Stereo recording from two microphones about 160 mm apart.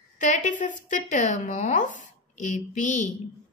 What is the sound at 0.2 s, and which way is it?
A woman's voice, 50° left (ahead or behind).